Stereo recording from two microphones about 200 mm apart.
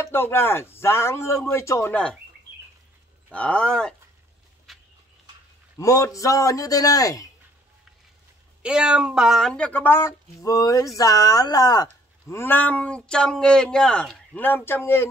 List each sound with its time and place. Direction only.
0.0 s speech: 10° left (ahead or behind)
3.3 s speech: 5° left (ahead or behind)
4.7 s horse: centre (ahead or behind)
5.8 s speech: 15° left (ahead or behind)
8.6 s speech: 5° right (ahead or behind); by 15.0 s 10° left (ahead or behind)